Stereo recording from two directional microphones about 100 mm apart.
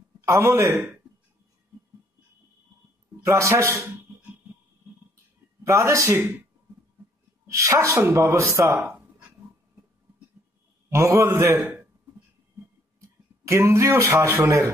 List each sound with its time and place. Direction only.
0.2 s speech: 25° right (ahead or behind)
3.2 s a man's voice: 30° right (ahead or behind)
5.6 s speech: 30° right (ahead or behind)
7.4 s speech: 30° right (ahead or behind)
8.7 s speech: 15° right (ahead or behind)
10.9 s a man's voice: 30° right (ahead or behind)
13.5 s speech: 30° right (ahead or behind)